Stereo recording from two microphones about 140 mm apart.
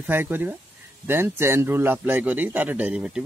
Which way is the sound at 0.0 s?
15° right (ahead or behind).